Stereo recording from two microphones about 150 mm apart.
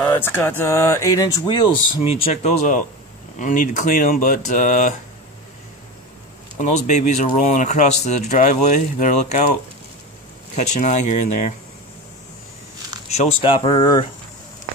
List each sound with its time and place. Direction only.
0.0 s speech: 15° left (ahead or behind); by 4.9 s 55° left (ahead or behind)
6.6 s speech: 50° left (ahead or behind)
13.1 s speech: 45° left (ahead or behind)